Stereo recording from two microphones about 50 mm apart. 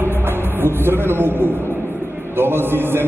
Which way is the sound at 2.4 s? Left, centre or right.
Right.